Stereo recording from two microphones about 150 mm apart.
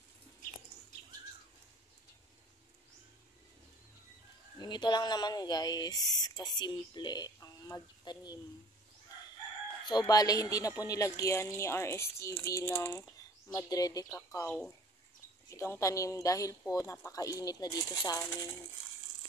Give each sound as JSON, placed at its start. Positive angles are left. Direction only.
{"t": 4.6, "sound": "speech", "side_deg": 30}
{"t": 9.8, "sound": "speech", "side_deg": 25}
{"t": 15.5, "sound": "speech", "side_deg": 20}